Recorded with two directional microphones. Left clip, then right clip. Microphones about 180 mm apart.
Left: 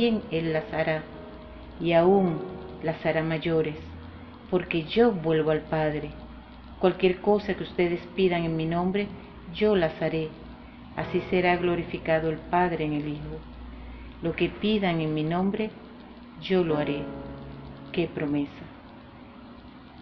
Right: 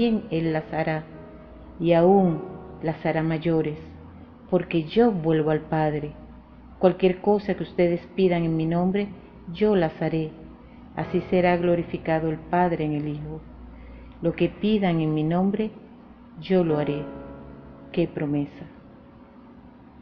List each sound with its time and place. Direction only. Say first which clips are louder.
0.3 s a woman's voice: right 1 dB; 55° right (ahead or behind)
2.2 s speech: right 2 dB; centre (ahead or behind)
2.8 s a woman's voice: right 1 dB; 55° right (ahead or behind)
14.2 s a woman's voice: right 3 dB; 55° right (ahead or behind)
16.9 s a man's voice: right 1 dB; centre (ahead or behind)
17.9 s a woman's voice: right 2 dB; 50° right (ahead or behind)